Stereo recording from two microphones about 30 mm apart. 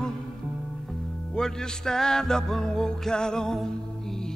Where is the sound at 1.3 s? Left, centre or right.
Left.